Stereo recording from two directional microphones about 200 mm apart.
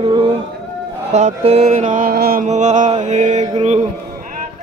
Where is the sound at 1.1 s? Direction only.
35° right (ahead or behind).